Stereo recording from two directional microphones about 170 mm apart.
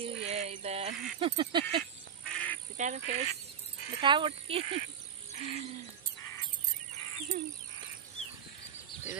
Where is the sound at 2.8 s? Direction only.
45° right (ahead or behind).